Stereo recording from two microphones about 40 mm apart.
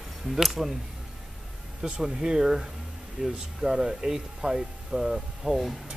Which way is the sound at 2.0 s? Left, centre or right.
Centre.